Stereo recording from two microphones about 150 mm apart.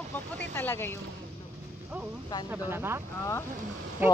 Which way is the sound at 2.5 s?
15° right (ahead or behind).